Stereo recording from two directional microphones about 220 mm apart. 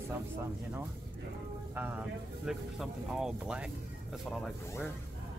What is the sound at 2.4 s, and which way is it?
Speech, centre (ahead or behind).